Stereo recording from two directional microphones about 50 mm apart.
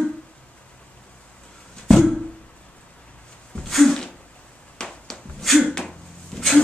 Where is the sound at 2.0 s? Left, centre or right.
Centre.